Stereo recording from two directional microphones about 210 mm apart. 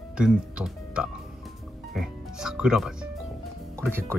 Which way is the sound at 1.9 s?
Centre (ahead or behind).